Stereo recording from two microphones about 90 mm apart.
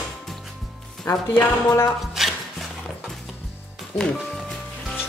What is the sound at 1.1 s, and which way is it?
Speech, 30° left (ahead or behind).